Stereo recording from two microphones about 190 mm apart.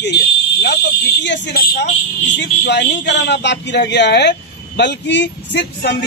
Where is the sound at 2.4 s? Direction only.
65° left (ahead or behind).